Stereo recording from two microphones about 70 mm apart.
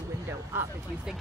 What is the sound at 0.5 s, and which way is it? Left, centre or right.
Speech, right.